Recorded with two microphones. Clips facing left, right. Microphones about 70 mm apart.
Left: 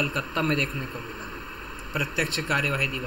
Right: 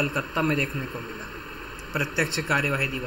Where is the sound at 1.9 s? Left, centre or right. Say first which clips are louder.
Right 2 dB; centre.